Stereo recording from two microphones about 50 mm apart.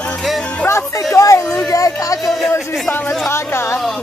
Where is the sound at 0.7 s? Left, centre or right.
Left.